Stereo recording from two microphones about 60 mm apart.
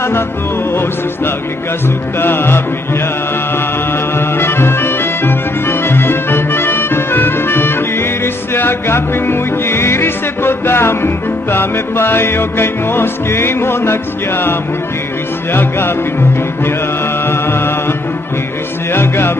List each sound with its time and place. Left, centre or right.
2.1 s music: left
4.2 s music: left
17.3 s music: left